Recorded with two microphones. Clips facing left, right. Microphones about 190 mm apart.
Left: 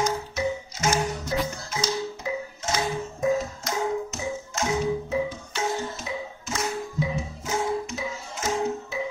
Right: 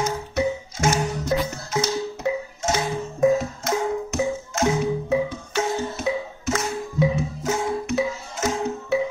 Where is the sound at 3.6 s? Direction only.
60° right (ahead or behind).